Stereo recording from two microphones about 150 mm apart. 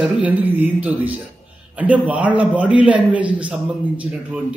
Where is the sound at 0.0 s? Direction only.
10° right (ahead or behind).